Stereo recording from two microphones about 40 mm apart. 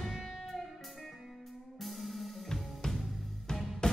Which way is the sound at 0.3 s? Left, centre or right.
Centre.